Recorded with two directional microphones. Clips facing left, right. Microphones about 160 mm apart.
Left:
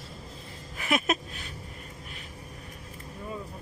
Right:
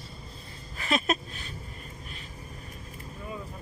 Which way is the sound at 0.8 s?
15° left (ahead or behind).